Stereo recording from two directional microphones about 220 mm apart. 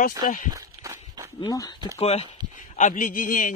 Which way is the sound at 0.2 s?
40° left (ahead or behind).